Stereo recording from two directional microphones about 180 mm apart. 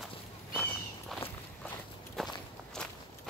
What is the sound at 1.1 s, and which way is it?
Walk, centre (ahead or behind).